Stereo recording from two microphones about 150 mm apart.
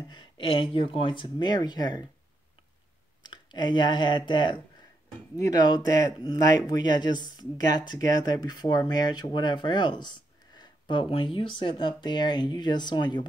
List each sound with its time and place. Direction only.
0.1 s speech: 35° left (ahead or behind)
3.2 s speech: 30° left (ahead or behind)